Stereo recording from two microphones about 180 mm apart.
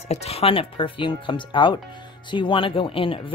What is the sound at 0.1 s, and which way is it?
Speech, 35° left (ahead or behind).